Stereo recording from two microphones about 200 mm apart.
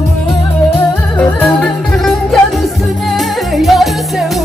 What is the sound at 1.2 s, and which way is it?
Music, 5° left (ahead or behind).